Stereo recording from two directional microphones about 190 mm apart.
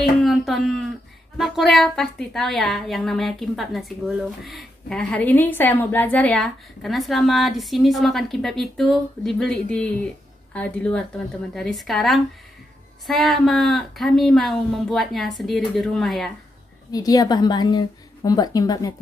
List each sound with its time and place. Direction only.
0.2 s a woman's voice: centre (ahead or behind)
16.9 s a woman's voice: 20° left (ahead or behind)